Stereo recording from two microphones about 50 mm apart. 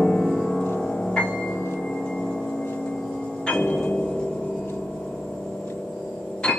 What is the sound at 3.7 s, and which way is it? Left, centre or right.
Tubular bells, centre.